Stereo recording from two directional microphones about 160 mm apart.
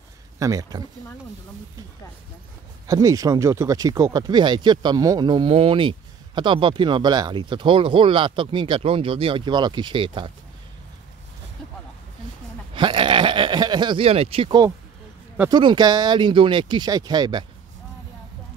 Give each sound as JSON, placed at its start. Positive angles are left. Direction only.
{"t": 0.4, "sound": "speech", "side_deg": -20}
{"t": 2.9, "sound": "speech", "side_deg": -20}
{"t": 12.7, "sound": "a sound", "side_deg": -30}
{"t": 15.5, "sound": "speech", "side_deg": -30}